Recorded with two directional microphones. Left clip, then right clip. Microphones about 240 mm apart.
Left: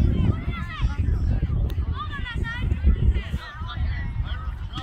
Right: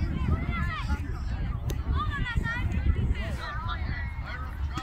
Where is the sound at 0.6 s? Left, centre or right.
Centre.